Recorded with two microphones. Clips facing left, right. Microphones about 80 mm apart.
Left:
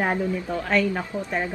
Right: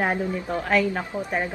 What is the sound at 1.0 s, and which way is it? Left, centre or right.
Speech, centre.